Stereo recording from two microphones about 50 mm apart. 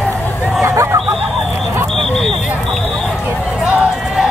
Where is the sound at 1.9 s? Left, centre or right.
Centre.